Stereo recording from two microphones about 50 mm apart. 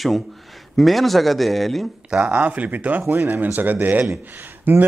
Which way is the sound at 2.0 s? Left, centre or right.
Right.